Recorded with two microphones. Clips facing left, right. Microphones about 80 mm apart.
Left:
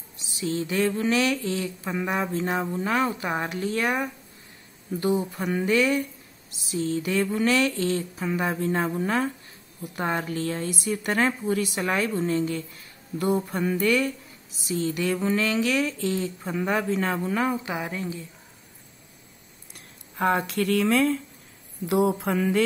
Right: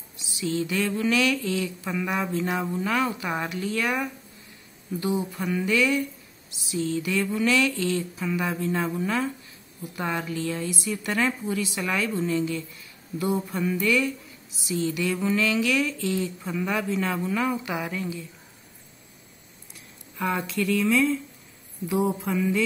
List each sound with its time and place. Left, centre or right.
0.4 s speech: left
5.3 s speech: left
17.7 s speech: left
19.7 s speech: left
21.8 s speech: left